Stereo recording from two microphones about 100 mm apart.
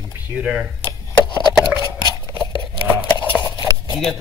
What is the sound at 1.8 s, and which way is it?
Cutlery, 40° right (ahead or behind).